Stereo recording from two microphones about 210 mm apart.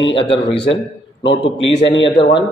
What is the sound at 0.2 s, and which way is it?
Speech, 55° left (ahead or behind).